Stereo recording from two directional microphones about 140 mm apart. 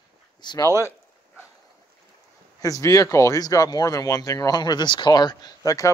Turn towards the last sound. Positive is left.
turn(degrees=25)  # may be behind; listen again after turning